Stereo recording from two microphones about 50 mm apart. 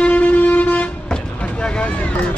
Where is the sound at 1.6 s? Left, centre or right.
Centre.